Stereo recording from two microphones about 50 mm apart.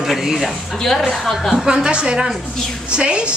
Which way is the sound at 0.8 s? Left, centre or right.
Centre.